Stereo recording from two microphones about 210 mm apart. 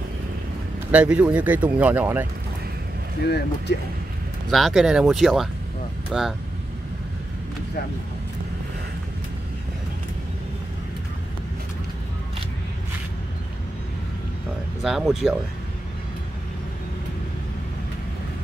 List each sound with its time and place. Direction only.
0.9 s speech: 5° right (ahead or behind)
3.2 s speech: 50° left (ahead or behind)
4.5 s speech: centre (ahead or behind)
14.8 s speech: centre (ahead or behind)